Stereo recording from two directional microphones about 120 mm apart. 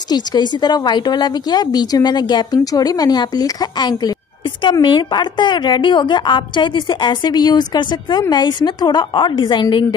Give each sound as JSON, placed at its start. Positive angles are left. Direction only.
{"t": 0.1, "sound": "a woman's voice", "side_deg": 35}